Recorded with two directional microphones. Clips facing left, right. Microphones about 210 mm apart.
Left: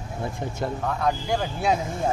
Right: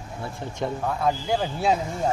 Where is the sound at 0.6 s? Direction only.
5° right (ahead or behind).